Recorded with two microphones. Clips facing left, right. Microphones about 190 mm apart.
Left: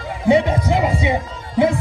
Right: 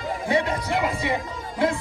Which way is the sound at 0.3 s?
20° left (ahead or behind).